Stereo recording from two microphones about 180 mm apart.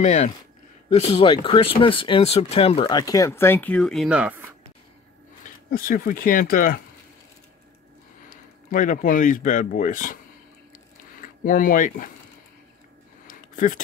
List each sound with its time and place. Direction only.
0.0 s speech: 40° left (ahead or behind); by 4.6 s 10° right (ahead or behind)
5.7 s speech: 55° left (ahead or behind)
8.3 s speech: 45° left (ahead or behind)
11.4 s speech: 50° left (ahead or behind)
13.3 s a sound: 45° left (ahead or behind)